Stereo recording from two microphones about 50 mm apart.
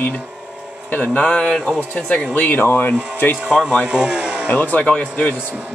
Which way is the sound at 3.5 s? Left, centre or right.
Centre.